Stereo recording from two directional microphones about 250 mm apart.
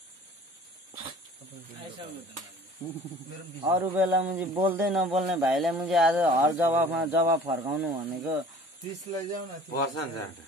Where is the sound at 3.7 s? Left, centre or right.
Centre.